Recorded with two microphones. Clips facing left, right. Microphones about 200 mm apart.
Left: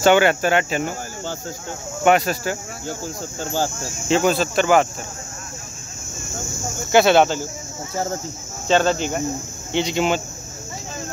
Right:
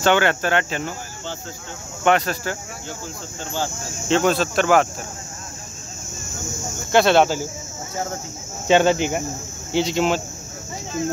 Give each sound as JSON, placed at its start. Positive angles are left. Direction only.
{"t": 0.0, "sound": "speech", "side_deg": 10}
{"t": 2.0, "sound": "speech", "side_deg": 10}
{"t": 2.9, "sound": "speech", "side_deg": 40}
{"t": 4.1, "sound": "speech", "side_deg": 0}
{"t": 6.9, "sound": "speech", "side_deg": 5}
{"t": 8.6, "sound": "speech", "side_deg": -15}
{"t": 9.7, "sound": "speech", "side_deg": 0}